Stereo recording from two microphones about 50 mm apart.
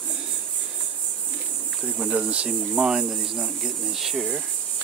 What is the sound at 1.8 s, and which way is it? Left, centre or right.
Speech, centre.